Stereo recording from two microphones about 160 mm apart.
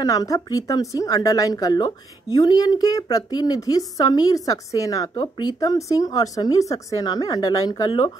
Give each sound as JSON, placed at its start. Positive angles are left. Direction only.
{"t": 0.0, "sound": "a woman's voice", "side_deg": 20}